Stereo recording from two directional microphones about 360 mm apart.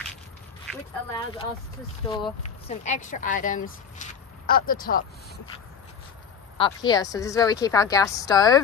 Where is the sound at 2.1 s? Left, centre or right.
Centre.